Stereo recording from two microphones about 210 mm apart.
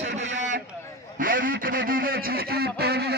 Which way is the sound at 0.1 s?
60° right (ahead or behind).